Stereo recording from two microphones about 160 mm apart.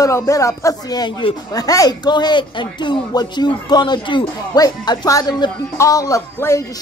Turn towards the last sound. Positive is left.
turn(degrees=15)  # may be behind; listen again after turning